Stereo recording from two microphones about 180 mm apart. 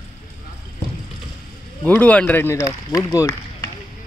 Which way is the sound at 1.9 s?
10° left (ahead or behind).